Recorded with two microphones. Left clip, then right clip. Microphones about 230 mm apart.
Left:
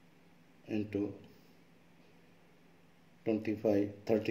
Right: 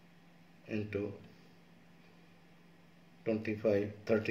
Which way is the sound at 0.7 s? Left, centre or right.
Left.